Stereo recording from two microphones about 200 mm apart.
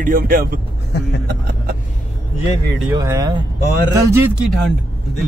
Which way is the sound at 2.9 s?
15° right (ahead or behind).